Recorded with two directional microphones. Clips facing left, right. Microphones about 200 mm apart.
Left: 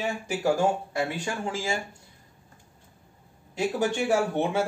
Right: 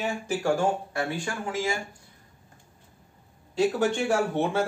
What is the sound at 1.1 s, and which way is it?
Speech, 20° left (ahead or behind).